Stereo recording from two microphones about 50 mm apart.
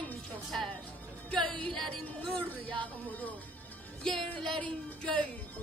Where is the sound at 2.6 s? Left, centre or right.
Left.